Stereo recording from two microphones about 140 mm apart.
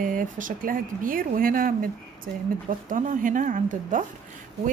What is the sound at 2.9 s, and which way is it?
Speech, 65° right (ahead or behind).